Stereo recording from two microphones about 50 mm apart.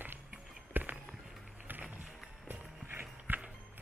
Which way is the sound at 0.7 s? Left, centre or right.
Right.